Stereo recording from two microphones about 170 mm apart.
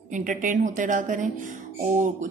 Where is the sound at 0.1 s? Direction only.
50° right (ahead or behind).